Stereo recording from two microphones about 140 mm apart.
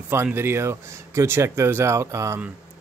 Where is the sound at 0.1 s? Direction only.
15° right (ahead or behind).